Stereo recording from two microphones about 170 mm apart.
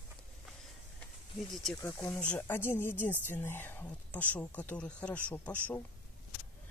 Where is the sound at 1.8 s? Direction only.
10° left (ahead or behind).